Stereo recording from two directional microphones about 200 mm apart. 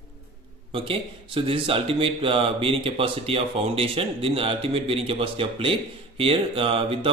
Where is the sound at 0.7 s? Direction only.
25° right (ahead or behind).